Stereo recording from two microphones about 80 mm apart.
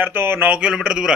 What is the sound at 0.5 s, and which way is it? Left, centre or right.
Speech, centre.